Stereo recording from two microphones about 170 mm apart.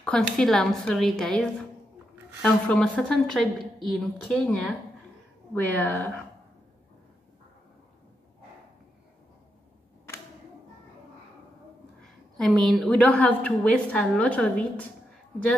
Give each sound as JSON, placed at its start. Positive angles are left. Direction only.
{"t": 0.0, "sound": "a woman's voice", "side_deg": 5}
{"t": 12.4, "sound": "a woman's voice", "side_deg": 0}